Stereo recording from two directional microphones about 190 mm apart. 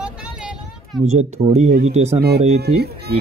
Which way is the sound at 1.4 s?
35° right (ahead or behind).